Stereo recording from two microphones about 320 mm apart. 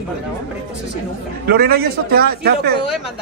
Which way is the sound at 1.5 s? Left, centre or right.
Right.